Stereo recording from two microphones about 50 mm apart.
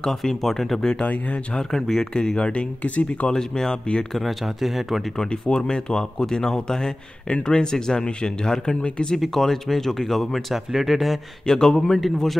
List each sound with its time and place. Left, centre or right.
0.0 s speech: centre
0.7 s speech: centre
1.6 s speech: centre; by 3.3 s left
3.3 s speech: centre
4.1 s speech: centre
5.1 s speech: centre
9.2 s speech: centre